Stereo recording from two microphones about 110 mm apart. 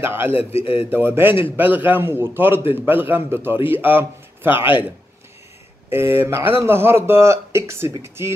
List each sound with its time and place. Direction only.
0.3 s a man's voice: 65° left (ahead or behind)
0.8 s speech: 20° right (ahead or behind)
4.6 s speech: 50° left (ahead or behind)
5.9 s speech: 20° right (ahead or behind)